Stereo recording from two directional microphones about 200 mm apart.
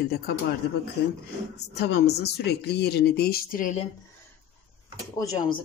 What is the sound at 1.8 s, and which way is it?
Speech, 55° left (ahead or behind).